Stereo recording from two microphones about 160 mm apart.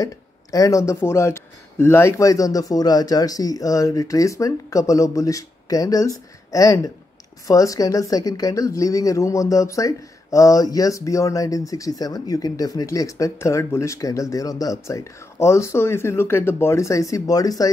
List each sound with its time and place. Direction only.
0.0 s speech: 20° left (ahead or behind)